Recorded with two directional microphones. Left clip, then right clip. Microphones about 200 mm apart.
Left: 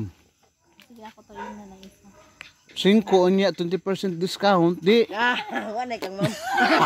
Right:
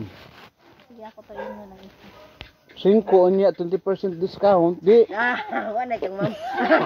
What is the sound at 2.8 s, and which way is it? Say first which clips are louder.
Speech: right 3 dB; 75° left (ahead or behind).